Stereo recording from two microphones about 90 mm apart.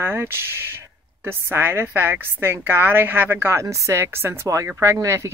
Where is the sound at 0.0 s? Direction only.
25° right (ahead or behind).